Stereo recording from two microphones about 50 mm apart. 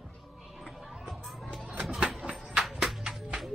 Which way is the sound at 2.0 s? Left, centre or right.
Centre.